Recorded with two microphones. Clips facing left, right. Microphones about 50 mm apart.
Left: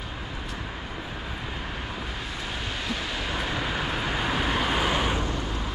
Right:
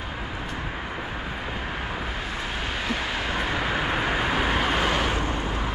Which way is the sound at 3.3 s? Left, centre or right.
Centre.